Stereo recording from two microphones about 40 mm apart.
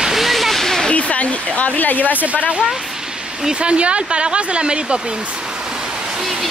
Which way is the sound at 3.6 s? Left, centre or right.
Right.